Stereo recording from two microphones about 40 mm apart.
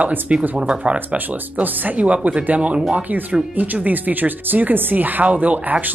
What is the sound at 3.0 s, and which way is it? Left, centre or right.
Speech, right.